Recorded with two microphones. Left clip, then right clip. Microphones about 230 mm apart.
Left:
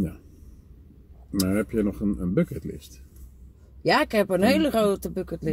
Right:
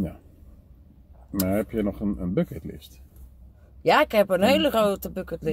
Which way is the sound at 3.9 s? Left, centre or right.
Centre.